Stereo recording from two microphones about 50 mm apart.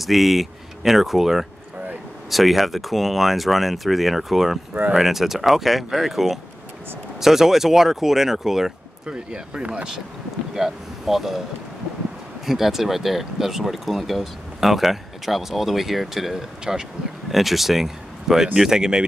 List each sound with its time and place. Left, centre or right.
0.0 s speech: centre
9.0 s speech: centre
10.5 s speech: centre
12.4 s speech: centre